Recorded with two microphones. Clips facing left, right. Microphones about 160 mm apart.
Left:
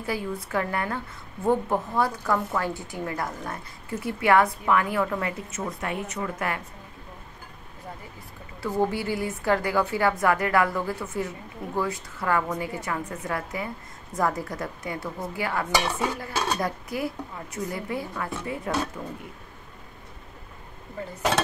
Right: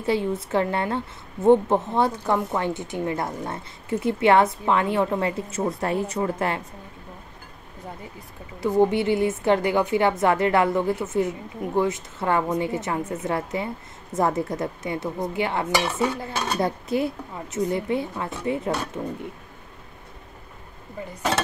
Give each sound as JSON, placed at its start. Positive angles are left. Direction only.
{"t": 0.0, "sound": "a woman's voice", "side_deg": -25}
{"t": 8.5, "sound": "a woman's voice", "side_deg": -20}